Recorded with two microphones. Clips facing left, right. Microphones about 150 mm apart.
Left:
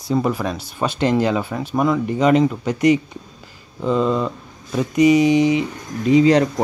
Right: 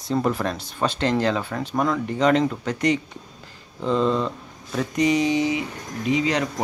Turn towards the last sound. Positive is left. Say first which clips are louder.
# left 9 dB
turn(degrees=35)  # may be behind; listen again after turning